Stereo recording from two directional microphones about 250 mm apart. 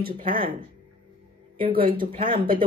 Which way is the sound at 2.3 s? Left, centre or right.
Right.